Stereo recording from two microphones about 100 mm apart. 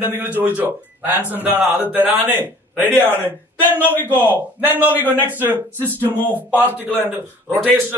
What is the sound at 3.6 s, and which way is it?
Speech, 20° left (ahead or behind).